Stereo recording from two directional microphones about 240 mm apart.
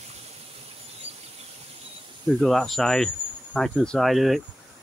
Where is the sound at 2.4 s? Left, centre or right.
Centre.